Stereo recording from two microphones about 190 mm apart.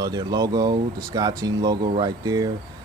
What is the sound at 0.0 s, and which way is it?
Speech, 20° right (ahead or behind).